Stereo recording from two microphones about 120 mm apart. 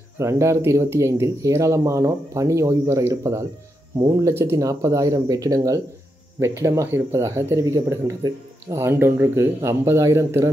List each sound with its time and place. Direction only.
0.2 s speech: 25° right (ahead or behind)